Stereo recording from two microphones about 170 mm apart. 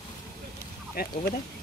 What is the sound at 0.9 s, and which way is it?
Speech, 60° left (ahead or behind).